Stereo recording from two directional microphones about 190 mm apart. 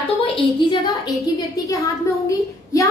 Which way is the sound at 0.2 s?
25° left (ahead or behind).